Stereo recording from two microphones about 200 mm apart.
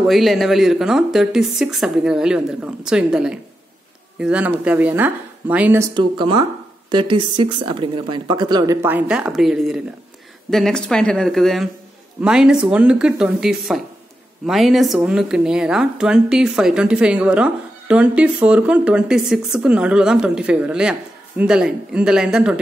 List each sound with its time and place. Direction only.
0.0 s speech: centre (ahead or behind)
5.9 s speech: 25° right (ahead or behind); by 22.6 s 5° right (ahead or behind)